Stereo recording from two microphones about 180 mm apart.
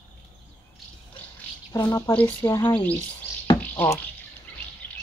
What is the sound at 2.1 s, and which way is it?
Speech, 5° left (ahead or behind).